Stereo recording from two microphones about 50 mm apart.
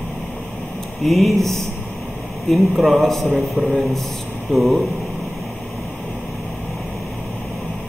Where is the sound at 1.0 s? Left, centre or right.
Centre.